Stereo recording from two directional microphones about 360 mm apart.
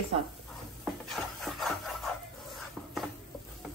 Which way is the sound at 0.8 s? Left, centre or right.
Centre.